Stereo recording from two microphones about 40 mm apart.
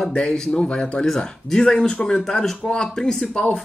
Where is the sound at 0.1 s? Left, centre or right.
Left.